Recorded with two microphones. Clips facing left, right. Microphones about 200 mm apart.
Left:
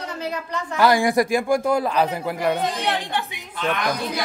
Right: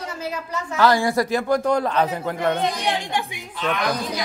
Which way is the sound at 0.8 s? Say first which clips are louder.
Left 1 dB; 15° left (ahead or behind).